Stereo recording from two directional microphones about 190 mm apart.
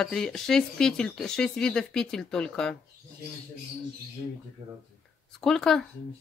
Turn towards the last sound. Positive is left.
turn(degrees=0)  # may be behind; listen again after turning